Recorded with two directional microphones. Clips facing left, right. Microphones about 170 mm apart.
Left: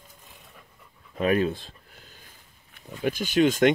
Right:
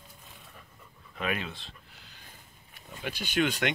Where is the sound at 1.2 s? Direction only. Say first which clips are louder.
Left 11 dB; 40° left (ahead or behind).